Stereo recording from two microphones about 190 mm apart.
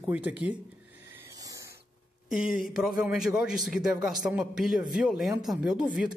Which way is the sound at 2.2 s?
Centre (ahead or behind).